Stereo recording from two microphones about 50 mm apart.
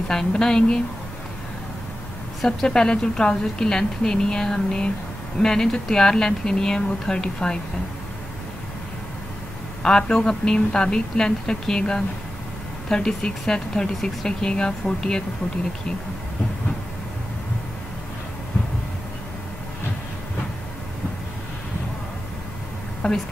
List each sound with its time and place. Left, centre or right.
0.1 s a woman's voice: centre
2.4 s a woman's voice: centre
9.8 s a woman's voice: centre
23.0 s speech: left